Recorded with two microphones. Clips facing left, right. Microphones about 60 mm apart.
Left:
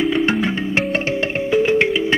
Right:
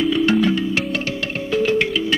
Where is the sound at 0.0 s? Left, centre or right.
Left.